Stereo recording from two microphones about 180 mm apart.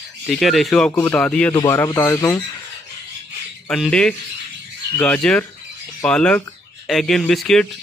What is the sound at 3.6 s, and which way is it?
Speech, 5° left (ahead or behind).